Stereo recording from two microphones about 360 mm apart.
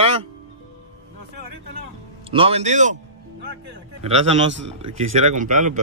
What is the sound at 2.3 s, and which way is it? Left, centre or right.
Speech, centre.